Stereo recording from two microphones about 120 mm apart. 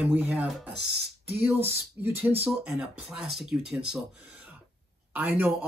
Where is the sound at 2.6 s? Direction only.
5° right (ahead or behind).